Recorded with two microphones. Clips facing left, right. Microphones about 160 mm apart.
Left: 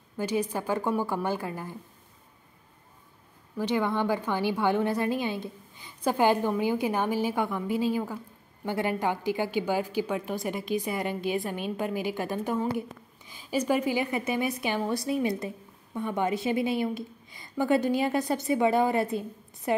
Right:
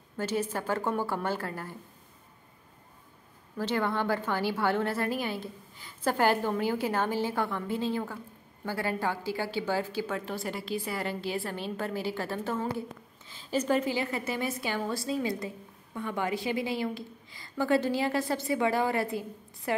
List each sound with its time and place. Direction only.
0.2 s a woman's voice: 15° left (ahead or behind)
3.5 s a woman's voice: 15° left (ahead or behind)